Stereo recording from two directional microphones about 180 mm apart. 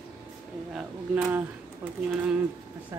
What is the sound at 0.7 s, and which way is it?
Speech, 10° right (ahead or behind).